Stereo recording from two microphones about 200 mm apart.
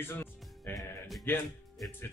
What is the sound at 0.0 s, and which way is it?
Music, 10° left (ahead or behind).